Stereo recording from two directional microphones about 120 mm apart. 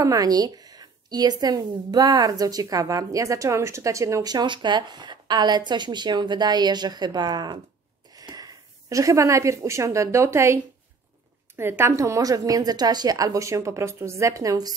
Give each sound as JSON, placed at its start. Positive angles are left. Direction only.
{"t": 0.0, "sound": "a woman's voice", "side_deg": -30}